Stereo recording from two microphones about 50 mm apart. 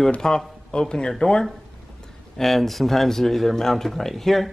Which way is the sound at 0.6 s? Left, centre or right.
Centre.